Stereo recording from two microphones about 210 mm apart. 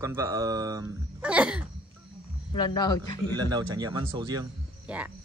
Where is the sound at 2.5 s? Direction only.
20° left (ahead or behind).